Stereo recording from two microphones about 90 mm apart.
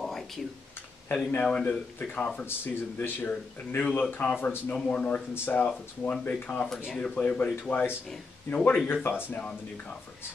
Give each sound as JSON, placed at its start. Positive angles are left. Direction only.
{"t": 1.1, "sound": "speech", "side_deg": 15}
{"t": 2.4, "sound": "speech", "side_deg": 25}
{"t": 9.3, "sound": "speech", "side_deg": 15}